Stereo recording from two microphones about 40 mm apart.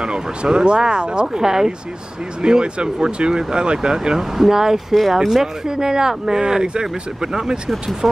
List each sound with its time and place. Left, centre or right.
0.0 s speech: centre
8.0 s speech: centre